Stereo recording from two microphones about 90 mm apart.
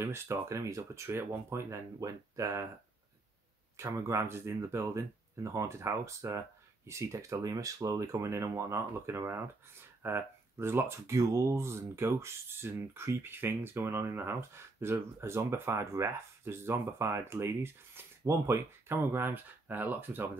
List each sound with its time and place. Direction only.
0.0 s speech: 30° right (ahead or behind)
3.7 s speech: 30° right (ahead or behind)